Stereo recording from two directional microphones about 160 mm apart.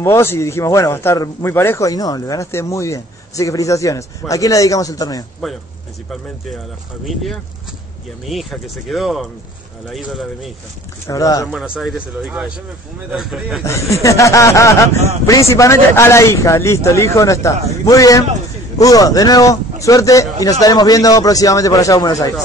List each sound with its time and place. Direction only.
0.0 s a man's voice: 15° left (ahead or behind)
5.4 s speech: centre (ahead or behind)
8.3 s speech: centre (ahead or behind)
11.1 s a man's voice: 20° left (ahead or behind)
11.5 s speech: 5° right (ahead or behind)
14.0 s a man's voice: 20° left (ahead or behind)